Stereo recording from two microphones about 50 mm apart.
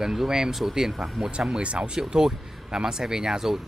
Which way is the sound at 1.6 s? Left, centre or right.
Right.